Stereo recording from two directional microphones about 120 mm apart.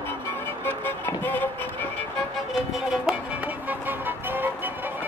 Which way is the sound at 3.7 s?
15° right (ahead or behind).